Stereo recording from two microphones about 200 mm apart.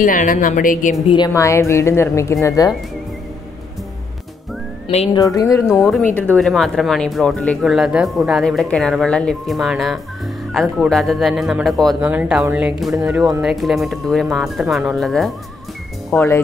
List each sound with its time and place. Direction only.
0.0 s a woman's voice: 40° left (ahead or behind)
1.0 s a woman's voice: 20° left (ahead or behind)
4.8 s speech: 25° left (ahead or behind)
5.2 s a woman's voice: 15° left (ahead or behind)
5.7 s speech: centre (ahead or behind)